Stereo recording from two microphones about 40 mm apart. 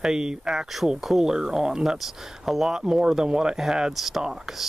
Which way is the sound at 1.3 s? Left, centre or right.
Centre.